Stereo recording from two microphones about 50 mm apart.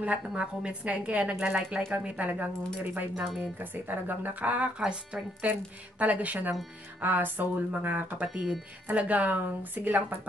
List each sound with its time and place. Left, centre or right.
0.4 s a woman's voice: right
5.5 s speech: right